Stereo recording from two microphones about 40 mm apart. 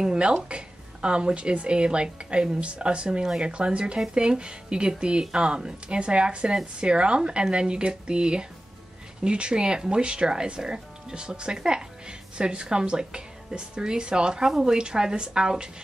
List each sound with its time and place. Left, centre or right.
0.0 s speech: right